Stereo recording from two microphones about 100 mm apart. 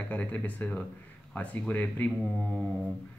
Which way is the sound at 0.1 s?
15° left (ahead or behind).